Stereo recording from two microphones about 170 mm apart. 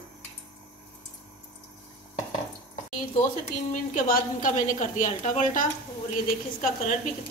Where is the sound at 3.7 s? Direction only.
50° left (ahead or behind).